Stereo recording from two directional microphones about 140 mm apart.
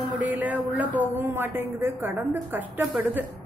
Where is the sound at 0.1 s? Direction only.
10° right (ahead or behind).